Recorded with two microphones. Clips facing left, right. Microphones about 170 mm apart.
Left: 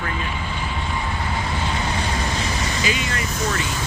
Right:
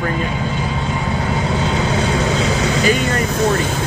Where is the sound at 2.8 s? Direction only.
60° right (ahead or behind).